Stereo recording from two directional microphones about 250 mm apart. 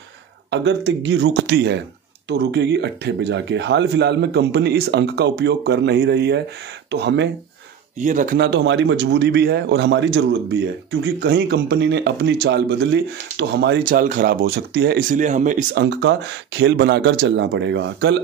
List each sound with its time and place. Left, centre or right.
0.5 s speech: right
8.0 s a man's voice: right
15.8 s speech: right